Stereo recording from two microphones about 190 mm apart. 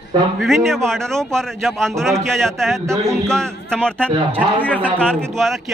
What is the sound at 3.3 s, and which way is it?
Speech, 5° left (ahead or behind).